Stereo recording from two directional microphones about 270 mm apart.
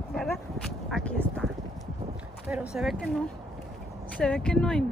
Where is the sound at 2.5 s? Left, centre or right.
Centre.